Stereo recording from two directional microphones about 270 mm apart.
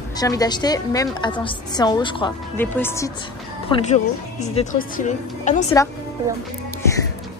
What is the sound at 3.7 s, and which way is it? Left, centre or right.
A woman's voice, left.